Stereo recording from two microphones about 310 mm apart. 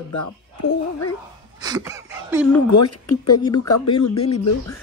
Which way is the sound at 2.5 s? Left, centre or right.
Left.